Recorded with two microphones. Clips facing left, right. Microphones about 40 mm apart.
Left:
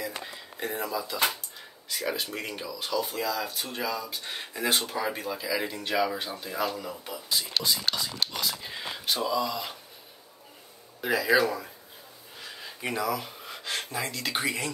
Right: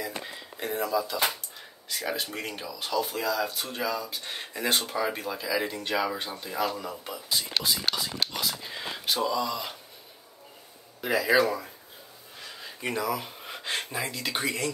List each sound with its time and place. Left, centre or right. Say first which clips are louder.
0.0 s a sound: right 1 dB; centre
1.9 s speech: even; centre
8.3 s whispering: even; centre
11.0 s speech: even; centre
12.8 s speech: even; centre
13.5 s a sound: right 2 dB; right
13.9 s speech: even; centre